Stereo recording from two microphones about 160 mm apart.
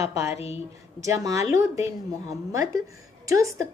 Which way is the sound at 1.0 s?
20° right (ahead or behind).